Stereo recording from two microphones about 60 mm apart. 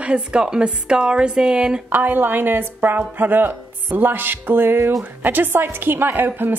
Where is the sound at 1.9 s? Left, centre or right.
Right.